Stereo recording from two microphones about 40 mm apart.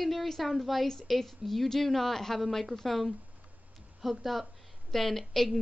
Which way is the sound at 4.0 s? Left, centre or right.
Centre.